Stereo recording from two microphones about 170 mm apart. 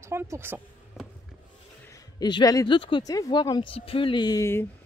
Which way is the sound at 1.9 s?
25° left (ahead or behind).